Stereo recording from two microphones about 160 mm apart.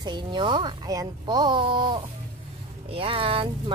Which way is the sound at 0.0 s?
30° right (ahead or behind).